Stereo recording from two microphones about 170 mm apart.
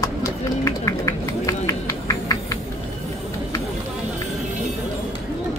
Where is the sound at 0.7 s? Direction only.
15° left (ahead or behind).